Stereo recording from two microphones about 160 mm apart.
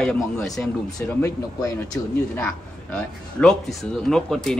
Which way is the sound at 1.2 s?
20° left (ahead or behind).